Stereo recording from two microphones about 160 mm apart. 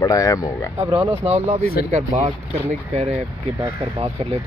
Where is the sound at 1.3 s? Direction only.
40° right (ahead or behind).